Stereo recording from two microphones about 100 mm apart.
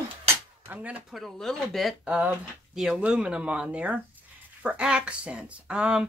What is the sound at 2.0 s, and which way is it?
Speech, 15° right (ahead or behind).